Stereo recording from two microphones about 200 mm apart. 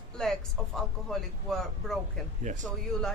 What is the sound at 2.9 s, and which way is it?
Speech, 5° left (ahead or behind).